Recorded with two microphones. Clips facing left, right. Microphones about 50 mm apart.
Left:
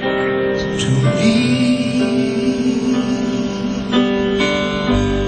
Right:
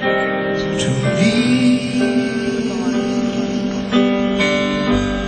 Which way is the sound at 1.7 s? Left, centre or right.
Left.